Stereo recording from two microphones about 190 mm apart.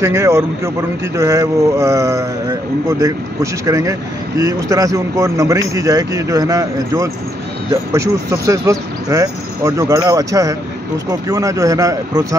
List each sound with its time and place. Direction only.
0.0 s speech: 15° right (ahead or behind)